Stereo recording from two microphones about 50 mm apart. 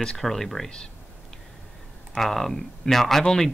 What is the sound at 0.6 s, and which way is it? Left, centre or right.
Speech, centre.